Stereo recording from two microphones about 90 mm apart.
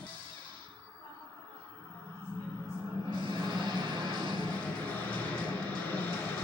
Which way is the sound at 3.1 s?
55° right (ahead or behind).